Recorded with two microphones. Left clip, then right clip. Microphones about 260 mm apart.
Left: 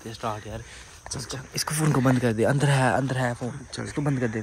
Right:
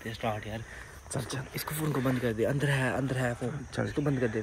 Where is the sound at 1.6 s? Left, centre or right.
Left.